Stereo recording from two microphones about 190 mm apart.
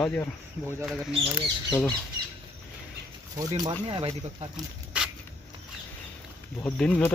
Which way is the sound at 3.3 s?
20° right (ahead or behind).